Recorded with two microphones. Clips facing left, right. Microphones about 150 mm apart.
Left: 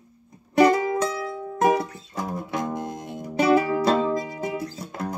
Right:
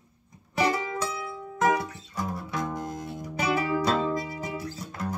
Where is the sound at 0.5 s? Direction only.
50° left (ahead or behind).